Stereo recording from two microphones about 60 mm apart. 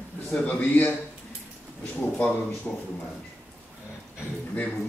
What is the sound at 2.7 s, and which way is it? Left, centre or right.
Speech, centre.